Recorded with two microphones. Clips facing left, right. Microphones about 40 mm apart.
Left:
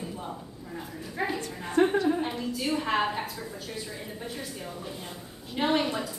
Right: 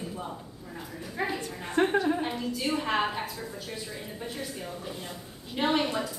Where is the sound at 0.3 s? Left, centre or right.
Centre.